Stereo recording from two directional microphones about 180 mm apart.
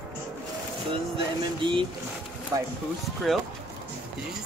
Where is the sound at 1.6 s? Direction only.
25° right (ahead or behind).